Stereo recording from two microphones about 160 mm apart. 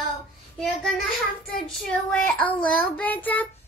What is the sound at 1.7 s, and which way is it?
A child's voice, 5° left (ahead or behind).